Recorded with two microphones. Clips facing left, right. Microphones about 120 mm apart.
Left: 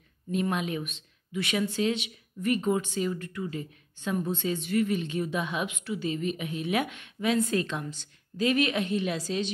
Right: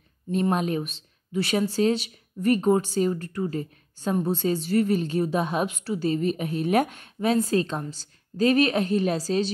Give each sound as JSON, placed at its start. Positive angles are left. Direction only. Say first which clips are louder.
{"t": 0.3, "sound": "speech", "louder": "right 5 dB", "side_deg": -40}